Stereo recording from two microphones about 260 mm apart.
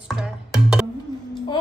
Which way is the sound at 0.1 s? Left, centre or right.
Centre.